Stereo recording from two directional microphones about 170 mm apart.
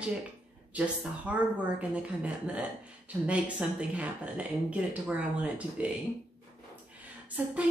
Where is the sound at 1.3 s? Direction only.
10° right (ahead or behind).